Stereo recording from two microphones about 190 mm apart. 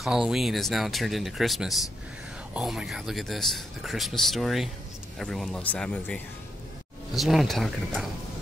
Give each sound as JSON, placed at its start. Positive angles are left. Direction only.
{"t": 0.0, "sound": "speech", "side_deg": -5}